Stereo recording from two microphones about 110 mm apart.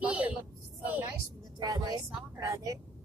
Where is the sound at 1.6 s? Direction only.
40° right (ahead or behind).